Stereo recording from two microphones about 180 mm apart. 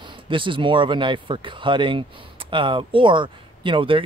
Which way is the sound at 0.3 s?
25° right (ahead or behind).